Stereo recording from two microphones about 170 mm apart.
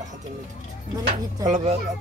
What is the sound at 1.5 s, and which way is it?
Speech, 40° right (ahead or behind).